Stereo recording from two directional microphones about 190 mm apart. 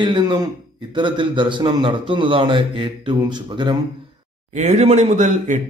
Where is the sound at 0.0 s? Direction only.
25° right (ahead or behind).